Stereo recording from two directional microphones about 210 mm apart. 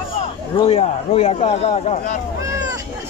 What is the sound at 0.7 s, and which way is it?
A man's voice, 30° left (ahead or behind).